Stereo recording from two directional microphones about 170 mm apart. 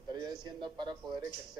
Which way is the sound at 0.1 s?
25° right (ahead or behind).